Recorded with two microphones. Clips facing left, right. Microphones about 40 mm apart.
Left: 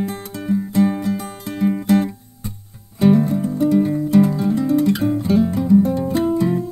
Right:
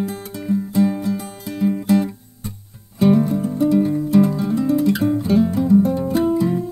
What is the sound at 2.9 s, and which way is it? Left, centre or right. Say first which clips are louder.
Music: left 1 dB; centre.